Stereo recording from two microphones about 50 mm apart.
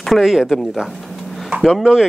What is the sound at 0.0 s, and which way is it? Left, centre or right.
Speech, centre.